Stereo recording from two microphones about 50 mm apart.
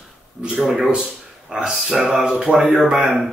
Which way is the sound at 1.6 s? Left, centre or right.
Centre.